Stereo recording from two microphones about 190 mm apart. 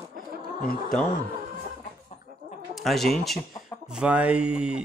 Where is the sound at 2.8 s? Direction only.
Centre (ahead or behind).